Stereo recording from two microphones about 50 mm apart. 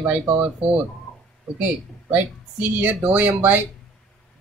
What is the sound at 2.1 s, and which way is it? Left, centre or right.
Speech, right.